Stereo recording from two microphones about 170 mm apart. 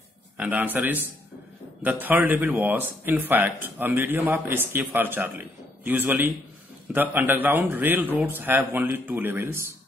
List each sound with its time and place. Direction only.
0.4 s a man's voice: 10° right (ahead or behind)